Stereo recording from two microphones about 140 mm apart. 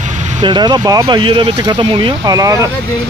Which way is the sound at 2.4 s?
25° right (ahead or behind).